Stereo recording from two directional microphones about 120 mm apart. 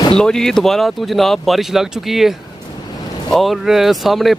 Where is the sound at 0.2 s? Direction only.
5° left (ahead or behind).